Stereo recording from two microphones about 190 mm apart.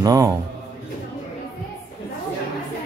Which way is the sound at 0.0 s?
15° right (ahead or behind).